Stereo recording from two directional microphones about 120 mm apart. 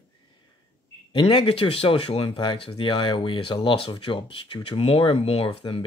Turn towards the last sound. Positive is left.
turn(degrees=50)  # may be behind; listen again after turning